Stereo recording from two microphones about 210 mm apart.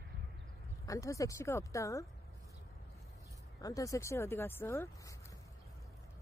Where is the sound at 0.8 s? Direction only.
15° left (ahead or behind).